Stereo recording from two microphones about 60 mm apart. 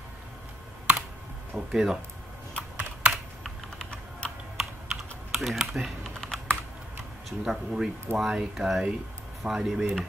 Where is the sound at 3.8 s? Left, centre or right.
Centre.